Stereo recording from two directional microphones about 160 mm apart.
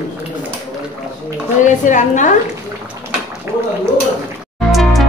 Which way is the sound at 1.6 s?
50° left (ahead or behind).